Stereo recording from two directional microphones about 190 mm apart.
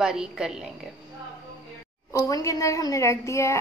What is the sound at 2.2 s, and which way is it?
A woman's voice, 15° left (ahead or behind).